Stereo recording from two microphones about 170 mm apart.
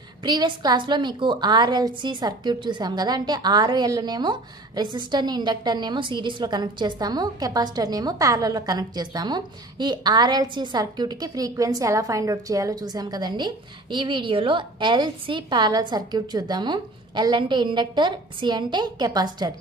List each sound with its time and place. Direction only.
0.2 s a woman's voice: 25° right (ahead or behind)